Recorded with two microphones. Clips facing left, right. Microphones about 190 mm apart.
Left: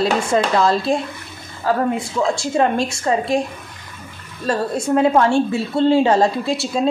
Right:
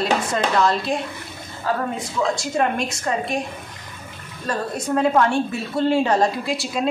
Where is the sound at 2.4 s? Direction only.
30° left (ahead or behind).